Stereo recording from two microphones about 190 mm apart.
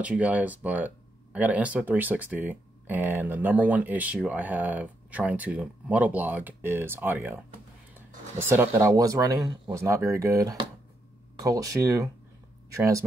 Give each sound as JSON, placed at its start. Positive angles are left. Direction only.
{"t": 0.0, "sound": "speech", "side_deg": -5}